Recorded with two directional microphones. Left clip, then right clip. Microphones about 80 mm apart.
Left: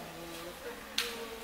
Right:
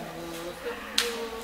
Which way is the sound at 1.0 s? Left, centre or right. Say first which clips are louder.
Right 8 dB; centre.